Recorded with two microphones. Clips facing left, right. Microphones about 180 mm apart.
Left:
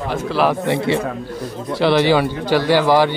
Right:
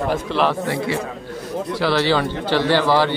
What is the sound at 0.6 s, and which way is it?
A man's voice, 20° left (ahead or behind).